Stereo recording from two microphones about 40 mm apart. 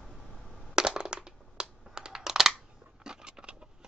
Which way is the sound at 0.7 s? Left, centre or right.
Centre.